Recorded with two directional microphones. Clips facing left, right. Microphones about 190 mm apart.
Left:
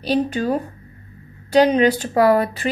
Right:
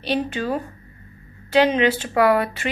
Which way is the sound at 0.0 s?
40° left (ahead or behind).